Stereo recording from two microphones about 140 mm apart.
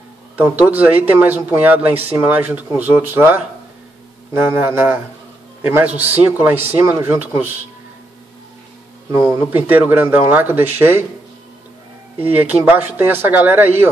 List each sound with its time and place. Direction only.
0.4 s speech: 15° right (ahead or behind)
9.2 s speech: 15° right (ahead or behind)
12.2 s speech: 15° right (ahead or behind)